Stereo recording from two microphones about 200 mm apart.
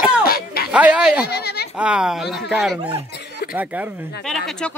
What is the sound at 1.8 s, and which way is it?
A man's voice, 5° right (ahead or behind).